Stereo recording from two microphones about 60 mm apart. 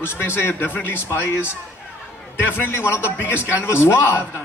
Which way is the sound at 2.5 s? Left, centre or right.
Left.